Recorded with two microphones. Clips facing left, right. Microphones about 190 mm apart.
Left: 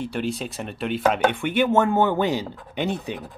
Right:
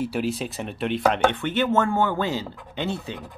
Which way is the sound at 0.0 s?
5° right (ahead or behind).